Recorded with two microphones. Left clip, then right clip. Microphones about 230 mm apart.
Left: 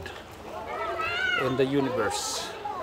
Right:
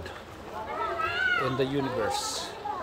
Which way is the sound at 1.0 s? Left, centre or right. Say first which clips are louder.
Even; left.